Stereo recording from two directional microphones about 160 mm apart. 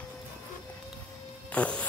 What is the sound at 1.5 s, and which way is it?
Music, 10° left (ahead or behind).